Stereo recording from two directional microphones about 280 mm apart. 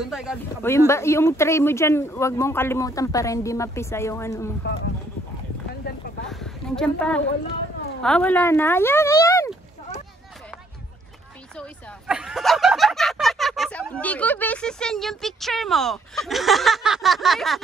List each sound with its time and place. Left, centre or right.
0.1 s speech: centre
0.6 s speech: centre
5.9 s a sound: left
6.2 s a sound: centre
8.0 s speech: centre
12.1 s speech: centre